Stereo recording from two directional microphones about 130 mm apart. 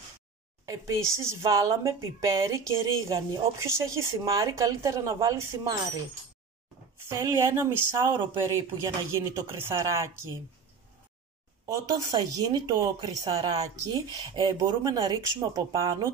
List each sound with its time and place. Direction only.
0.7 s speech: 25° right (ahead or behind)
7.1 s speech: 20° right (ahead or behind)
11.6 s speech: 25° right (ahead or behind)